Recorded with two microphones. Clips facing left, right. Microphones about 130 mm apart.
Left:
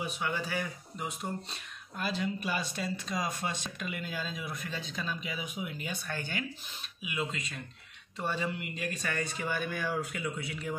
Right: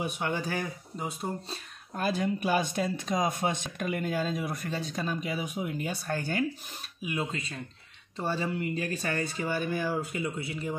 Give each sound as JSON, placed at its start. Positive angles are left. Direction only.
{"t": 0.4, "sound": "speech", "side_deg": -45}
{"t": 0.9, "sound": "speech", "side_deg": -35}
{"t": 2.0, "sound": "speech", "side_deg": -50}